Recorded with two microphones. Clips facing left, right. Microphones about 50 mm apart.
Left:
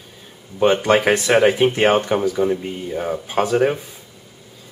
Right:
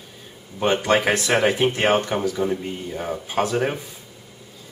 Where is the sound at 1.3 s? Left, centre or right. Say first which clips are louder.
Left 5 dB; centre.